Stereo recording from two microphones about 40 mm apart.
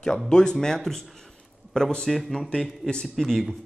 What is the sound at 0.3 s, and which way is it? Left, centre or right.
A man's voice, centre.